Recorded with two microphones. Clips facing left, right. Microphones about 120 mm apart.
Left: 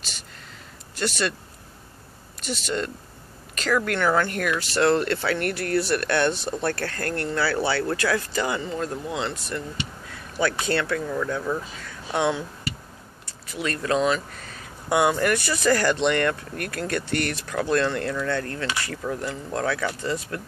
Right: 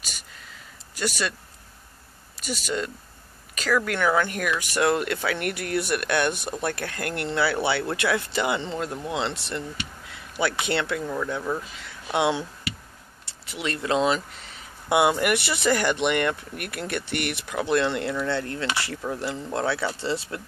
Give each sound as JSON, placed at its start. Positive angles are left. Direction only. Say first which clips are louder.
{"t": 0.9, "sound": "speech", "louder": "left 2 dB", "side_deg": -10}
{"t": 2.4, "sound": "speech", "louder": "left 1 dB", "side_deg": -5}
{"t": 11.8, "sound": "a sound", "louder": "right 1 dB", "side_deg": -15}
{"t": 13.5, "sound": "speech", "louder": "left 1 dB", "side_deg": -20}